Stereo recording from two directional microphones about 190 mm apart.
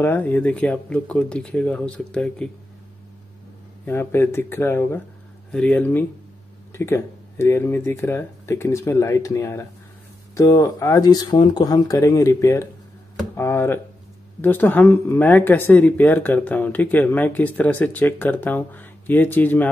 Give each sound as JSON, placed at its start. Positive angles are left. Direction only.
{"t": 0.0, "sound": "speech", "side_deg": 10}
{"t": 3.8, "sound": "speech", "side_deg": 10}